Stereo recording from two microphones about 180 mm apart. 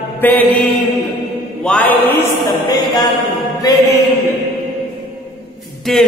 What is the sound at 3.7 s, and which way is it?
Mantra, 20° left (ahead or behind).